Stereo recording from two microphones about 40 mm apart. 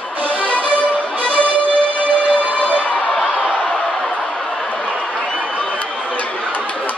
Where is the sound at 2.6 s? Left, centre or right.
Left.